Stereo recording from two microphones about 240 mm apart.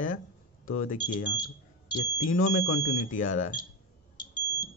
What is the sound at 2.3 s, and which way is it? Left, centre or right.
A man's voice, left.